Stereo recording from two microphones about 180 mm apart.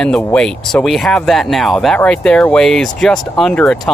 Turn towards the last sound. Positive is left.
turn(degrees=5)  # may be behind; listen again after turning